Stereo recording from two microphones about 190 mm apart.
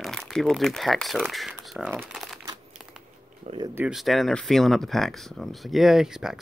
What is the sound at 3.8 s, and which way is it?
Speech, centre (ahead or behind).